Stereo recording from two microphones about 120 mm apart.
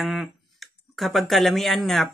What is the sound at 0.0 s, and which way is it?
Clicking, centre (ahead or behind).